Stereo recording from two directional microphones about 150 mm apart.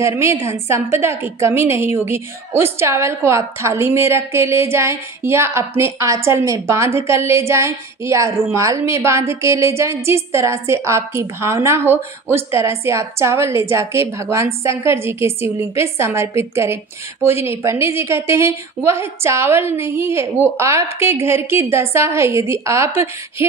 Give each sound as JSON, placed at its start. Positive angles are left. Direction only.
{"t": 0.0, "sound": "a woman's voice", "side_deg": -20}